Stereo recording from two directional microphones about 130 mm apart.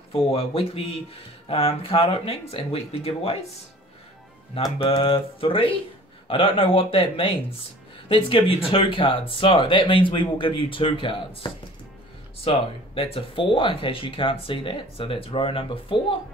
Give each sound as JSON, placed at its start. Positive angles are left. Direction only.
{"t": 0.1, "sound": "speech", "side_deg": 50}
{"t": 4.8, "sound": "speech", "side_deg": 45}